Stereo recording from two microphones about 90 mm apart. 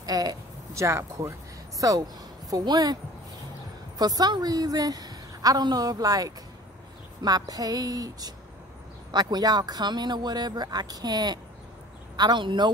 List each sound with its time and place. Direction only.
0.0 s a sound: 45° right (ahead or behind)
1.8 s a woman's voice: 40° right (ahead or behind)
4.0 s a woman's voice: 50° right (ahead or behind)